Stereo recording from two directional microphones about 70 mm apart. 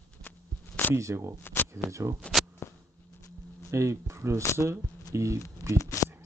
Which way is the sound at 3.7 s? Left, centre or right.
Right.